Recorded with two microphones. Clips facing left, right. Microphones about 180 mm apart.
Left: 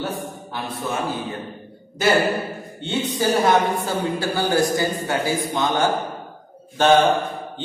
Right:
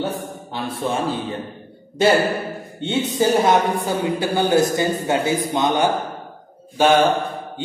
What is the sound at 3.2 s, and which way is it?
Speech, 20° right (ahead or behind).